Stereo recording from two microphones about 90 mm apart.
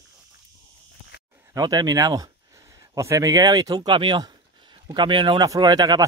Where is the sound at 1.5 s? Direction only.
45° right (ahead or behind); by 5.4 s 65° right (ahead or behind).